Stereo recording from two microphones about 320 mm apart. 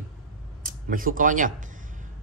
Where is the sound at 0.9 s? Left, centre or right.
Right.